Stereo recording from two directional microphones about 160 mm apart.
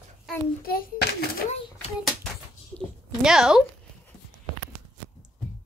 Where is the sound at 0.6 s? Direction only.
70° left (ahead or behind).